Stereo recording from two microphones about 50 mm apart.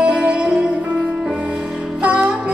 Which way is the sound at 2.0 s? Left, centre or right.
Right.